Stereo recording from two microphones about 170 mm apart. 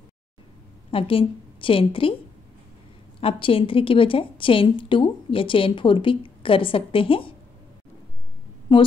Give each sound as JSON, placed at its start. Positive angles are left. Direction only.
{"t": 0.9, "sound": "a woman's voice", "side_deg": 30}
{"t": 3.2, "sound": "a woman's voice", "side_deg": 30}
{"t": 8.7, "sound": "a woman's voice", "side_deg": 30}